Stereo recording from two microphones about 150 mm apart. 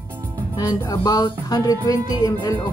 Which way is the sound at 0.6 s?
25° left (ahead or behind).